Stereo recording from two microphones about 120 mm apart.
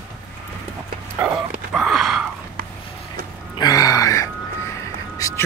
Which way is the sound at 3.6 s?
30° left (ahead or behind).